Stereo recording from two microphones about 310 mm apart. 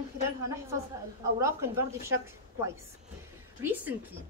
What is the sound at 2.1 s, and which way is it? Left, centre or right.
Speech, right.